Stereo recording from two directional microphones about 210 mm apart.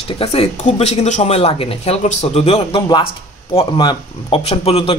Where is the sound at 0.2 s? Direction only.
30° left (ahead or behind).